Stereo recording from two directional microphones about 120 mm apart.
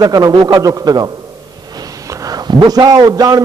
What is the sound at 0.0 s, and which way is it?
A man's voice, 35° right (ahead or behind).